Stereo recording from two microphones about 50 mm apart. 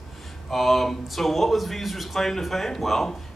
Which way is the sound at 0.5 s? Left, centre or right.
Centre.